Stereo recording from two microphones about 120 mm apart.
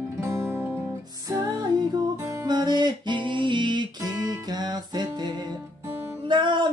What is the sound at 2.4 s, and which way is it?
Music, 35° right (ahead or behind).